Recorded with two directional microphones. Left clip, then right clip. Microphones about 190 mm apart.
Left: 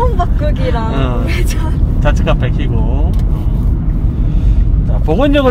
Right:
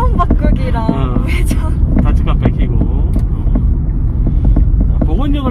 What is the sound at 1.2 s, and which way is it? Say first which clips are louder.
Speech: left 1 dB; 20° right (ahead or behind).